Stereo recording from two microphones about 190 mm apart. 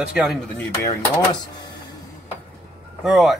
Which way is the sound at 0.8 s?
15° left (ahead or behind).